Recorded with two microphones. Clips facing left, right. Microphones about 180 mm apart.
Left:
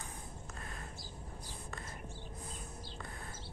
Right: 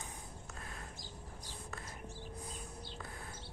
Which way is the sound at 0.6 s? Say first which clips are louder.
Left 1 dB; centre (ahead or behind).